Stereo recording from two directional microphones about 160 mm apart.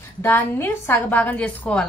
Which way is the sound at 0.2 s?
10° left (ahead or behind).